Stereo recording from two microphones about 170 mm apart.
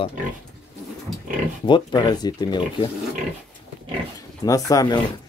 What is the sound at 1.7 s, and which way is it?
Speech, 25° left (ahead or behind).